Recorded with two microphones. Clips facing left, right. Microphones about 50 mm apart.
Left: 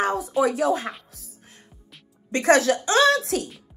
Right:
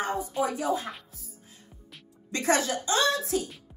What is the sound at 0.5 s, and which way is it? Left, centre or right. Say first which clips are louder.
Speech: left 6 dB; left.